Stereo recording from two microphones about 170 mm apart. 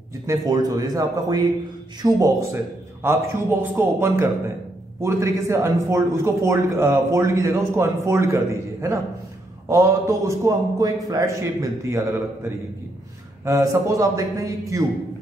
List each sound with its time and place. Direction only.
0.3 s a man's voice: 20° right (ahead or behind)
9.7 s a man's voice: 20° right (ahead or behind)
13.5 s a man's voice: 20° right (ahead or behind)